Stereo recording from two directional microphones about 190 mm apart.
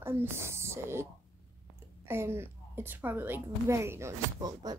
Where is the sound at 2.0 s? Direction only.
15° right (ahead or behind).